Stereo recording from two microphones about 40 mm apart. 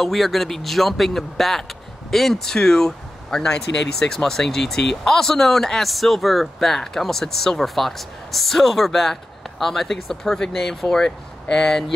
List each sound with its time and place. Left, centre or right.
0.0 s speech: centre